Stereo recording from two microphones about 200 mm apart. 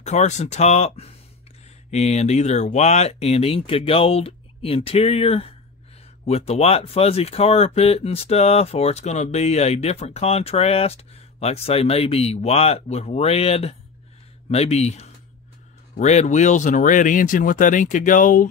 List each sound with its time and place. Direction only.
0.0 s speech: 35° left (ahead or behind)